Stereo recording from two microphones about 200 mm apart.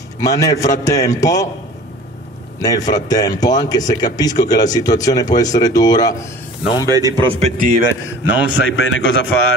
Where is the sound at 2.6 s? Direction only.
20° left (ahead or behind).